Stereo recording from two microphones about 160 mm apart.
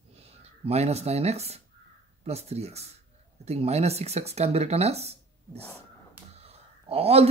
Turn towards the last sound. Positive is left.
turn(degrees=-40)  # may be behind; listen again after turning